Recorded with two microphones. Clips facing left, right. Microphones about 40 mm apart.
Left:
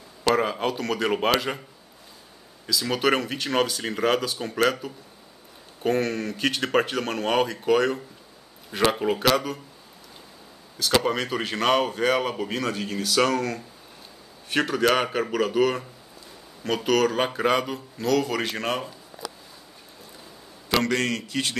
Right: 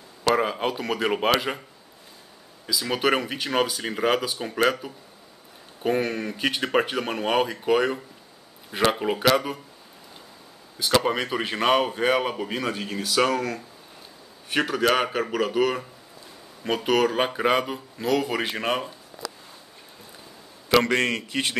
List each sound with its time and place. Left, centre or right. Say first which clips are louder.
0.3 s speech: even; centre
2.6 s a man's voice: even; centre
10.8 s a man's voice: right 1 dB; centre
16.6 s speech: even; centre
20.7 s a man's voice: right 3 dB; right